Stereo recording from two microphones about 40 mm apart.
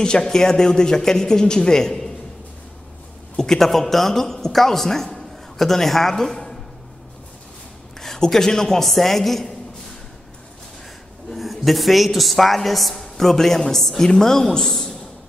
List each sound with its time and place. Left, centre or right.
0.0 s speech: centre
3.3 s a man's voice: centre
8.0 s speech: centre
11.3 s a woman's voice: centre